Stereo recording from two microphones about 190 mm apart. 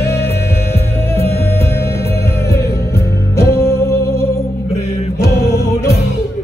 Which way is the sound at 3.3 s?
60° left (ahead or behind).